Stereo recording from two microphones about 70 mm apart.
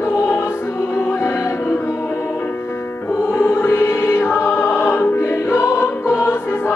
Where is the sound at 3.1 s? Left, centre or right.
Left.